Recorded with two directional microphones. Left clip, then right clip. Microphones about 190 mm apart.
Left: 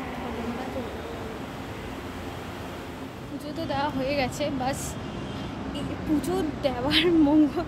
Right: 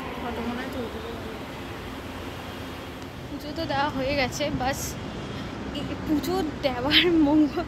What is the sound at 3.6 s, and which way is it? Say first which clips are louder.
Speech: right 2 dB; centre (ahead or behind).